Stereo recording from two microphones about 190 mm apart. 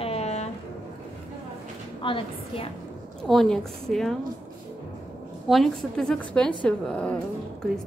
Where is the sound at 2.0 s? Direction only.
25° left (ahead or behind).